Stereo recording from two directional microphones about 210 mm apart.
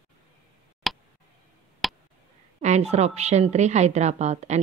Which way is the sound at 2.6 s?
35° right (ahead or behind).